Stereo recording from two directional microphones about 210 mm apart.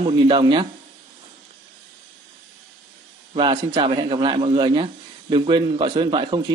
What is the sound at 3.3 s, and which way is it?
Speech, 25° right (ahead or behind).